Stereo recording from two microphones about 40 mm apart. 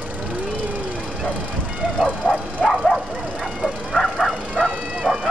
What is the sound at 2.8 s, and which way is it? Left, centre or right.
Bow-wow, centre.